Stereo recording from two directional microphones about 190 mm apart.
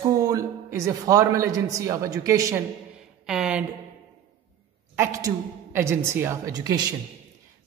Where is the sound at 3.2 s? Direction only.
5° right (ahead or behind).